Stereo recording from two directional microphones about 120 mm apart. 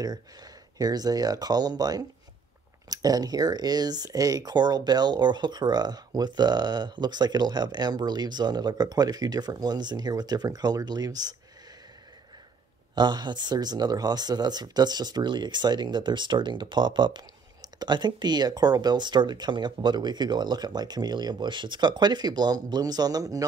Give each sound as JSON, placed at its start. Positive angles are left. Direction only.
{"t": 0.0, "sound": "speech", "side_deg": -35}
{"t": 12.9, "sound": "speech", "side_deg": -40}